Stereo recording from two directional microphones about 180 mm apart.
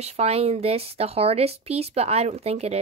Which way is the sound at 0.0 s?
35° right (ahead or behind).